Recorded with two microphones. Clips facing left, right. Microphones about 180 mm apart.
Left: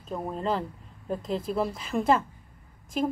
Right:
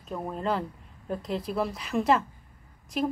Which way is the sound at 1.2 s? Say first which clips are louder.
Left 1 dB; centre (ahead or behind).